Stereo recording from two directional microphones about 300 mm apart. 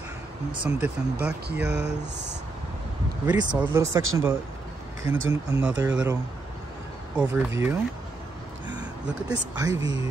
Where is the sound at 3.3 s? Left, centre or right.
Centre.